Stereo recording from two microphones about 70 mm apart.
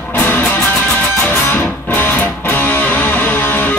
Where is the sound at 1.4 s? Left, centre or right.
Left.